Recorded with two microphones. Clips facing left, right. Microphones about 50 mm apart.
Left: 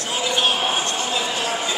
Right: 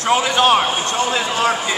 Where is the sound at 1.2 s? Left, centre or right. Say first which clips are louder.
Right 5 dB; right.